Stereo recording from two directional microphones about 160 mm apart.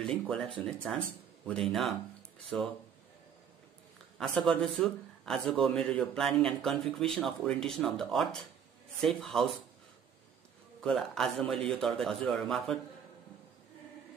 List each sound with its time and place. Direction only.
0.1 s speech: 5° left (ahead or behind)
4.5 s speech: centre (ahead or behind)
10.8 s speech: centre (ahead or behind)